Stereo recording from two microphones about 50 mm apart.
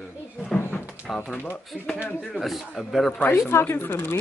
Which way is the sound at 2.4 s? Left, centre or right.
Centre.